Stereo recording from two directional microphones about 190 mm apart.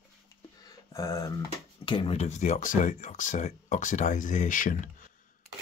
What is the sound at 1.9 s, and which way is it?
Speech, 30° left (ahead or behind).